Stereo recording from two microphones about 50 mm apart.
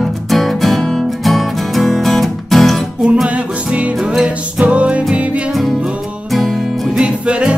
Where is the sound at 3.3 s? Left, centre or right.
Right.